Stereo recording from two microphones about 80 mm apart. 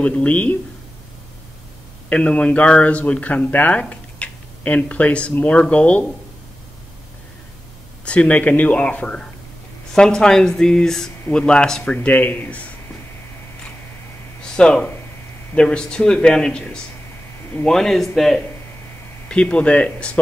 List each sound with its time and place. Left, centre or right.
0.0 s speech: centre
2.0 s speech: centre
8.0 s speech: centre
14.4 s a man's voice: centre